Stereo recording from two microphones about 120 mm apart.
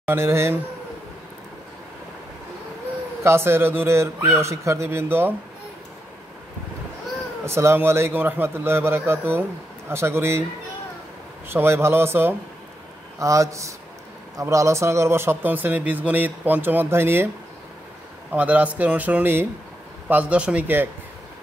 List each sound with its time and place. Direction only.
0.0 s speech: 20° right (ahead or behind)
3.3 s speech: 20° right (ahead or behind)
7.4 s speech: 20° right (ahead or behind)
11.4 s speech: 20° right (ahead or behind)
18.3 s speech: 10° right (ahead or behind)